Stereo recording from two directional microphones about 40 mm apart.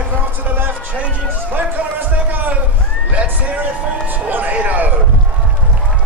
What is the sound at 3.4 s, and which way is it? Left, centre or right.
A man's voice, right.